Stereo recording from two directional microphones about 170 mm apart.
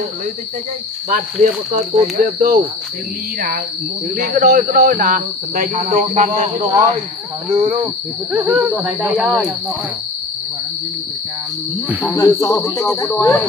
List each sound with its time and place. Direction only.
2.0 s speech: 50° right (ahead or behind)
4.2 s speech: 60° right (ahead or behind)
6.7 s speech: 25° right (ahead or behind)
7.4 s cricket: 10° right (ahead or behind)
11.9 s cricket: 10° right (ahead or behind)
12.2 s cricket: 15° left (ahead or behind)